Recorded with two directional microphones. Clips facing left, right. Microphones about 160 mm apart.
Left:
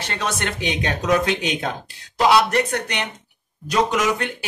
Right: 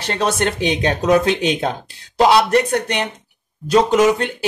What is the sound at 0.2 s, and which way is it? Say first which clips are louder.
Speech: right 7 dB; 35° right (ahead or behind).